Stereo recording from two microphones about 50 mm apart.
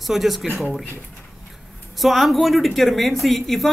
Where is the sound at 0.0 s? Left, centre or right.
Centre.